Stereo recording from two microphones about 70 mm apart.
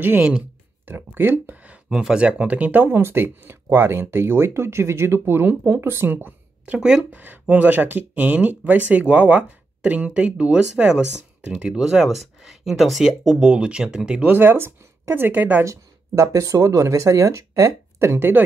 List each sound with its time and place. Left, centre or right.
0.8 s speech: right
15.6 s speech: right